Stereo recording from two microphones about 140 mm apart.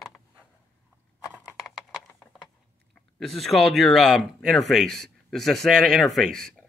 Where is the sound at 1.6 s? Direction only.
5° right (ahead or behind).